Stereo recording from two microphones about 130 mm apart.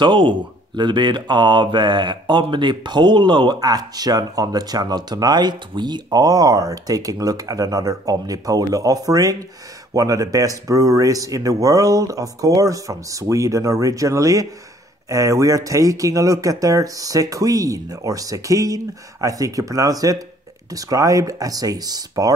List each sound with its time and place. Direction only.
0.0 s speech: 40° right (ahead or behind)